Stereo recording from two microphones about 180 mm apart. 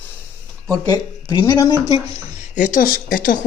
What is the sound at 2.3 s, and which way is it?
Speech, 40° left (ahead or behind).